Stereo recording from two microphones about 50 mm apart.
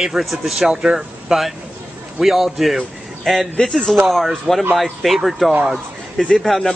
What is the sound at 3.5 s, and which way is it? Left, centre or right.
Speech, centre.